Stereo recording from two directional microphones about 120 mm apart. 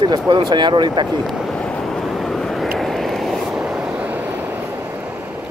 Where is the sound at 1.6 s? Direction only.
5° left (ahead or behind); by 4.6 s 15° right (ahead or behind).